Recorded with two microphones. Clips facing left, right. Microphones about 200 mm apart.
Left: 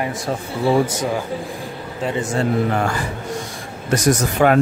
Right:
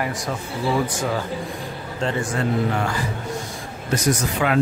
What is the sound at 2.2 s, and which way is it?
Speech, 25° left (ahead or behind).